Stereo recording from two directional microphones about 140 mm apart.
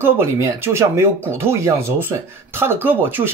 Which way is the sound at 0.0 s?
15° right (ahead or behind).